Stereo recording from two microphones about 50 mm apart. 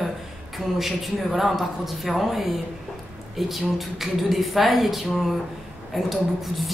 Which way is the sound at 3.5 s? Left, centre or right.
Centre.